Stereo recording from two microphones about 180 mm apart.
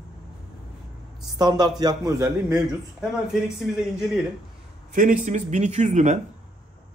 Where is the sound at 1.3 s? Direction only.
25° right (ahead or behind).